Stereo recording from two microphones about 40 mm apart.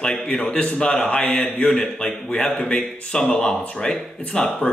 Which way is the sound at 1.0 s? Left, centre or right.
Left.